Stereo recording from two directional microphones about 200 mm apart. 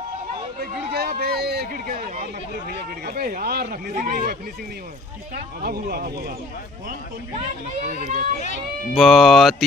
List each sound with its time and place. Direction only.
0.9 s speech: 50° right (ahead or behind)
8.0 s speech: 45° right (ahead or behind)
8.9 s speech: centre (ahead or behind)